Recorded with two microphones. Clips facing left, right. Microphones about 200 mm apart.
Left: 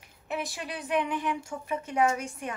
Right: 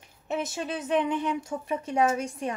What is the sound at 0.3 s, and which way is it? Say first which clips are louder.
A woman's voice: right 4 dB; 25° right (ahead or behind).